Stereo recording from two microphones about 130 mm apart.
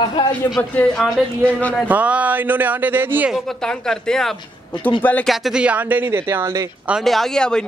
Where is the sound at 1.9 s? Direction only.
10° right (ahead or behind).